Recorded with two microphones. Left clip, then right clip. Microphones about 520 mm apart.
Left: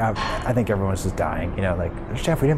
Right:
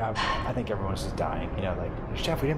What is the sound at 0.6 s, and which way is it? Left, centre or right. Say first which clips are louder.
Speech: left 8 dB; left.